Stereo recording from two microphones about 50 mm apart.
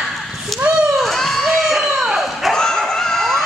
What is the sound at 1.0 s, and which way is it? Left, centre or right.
Crowd, centre.